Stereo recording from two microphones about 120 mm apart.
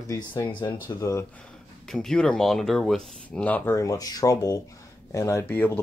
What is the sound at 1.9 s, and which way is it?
Speech, 5° left (ahead or behind).